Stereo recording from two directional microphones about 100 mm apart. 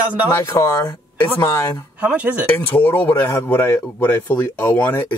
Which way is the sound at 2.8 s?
20° left (ahead or behind).